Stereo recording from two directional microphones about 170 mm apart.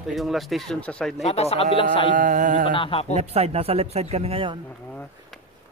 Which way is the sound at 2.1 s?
50° right (ahead or behind).